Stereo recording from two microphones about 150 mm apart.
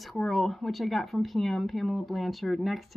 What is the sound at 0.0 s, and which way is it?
Speech, centre (ahead or behind).